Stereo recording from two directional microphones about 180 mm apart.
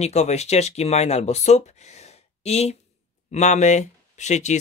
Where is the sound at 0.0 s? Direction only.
35° left (ahead or behind).